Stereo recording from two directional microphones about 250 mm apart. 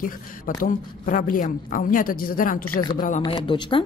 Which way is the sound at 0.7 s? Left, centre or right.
Left.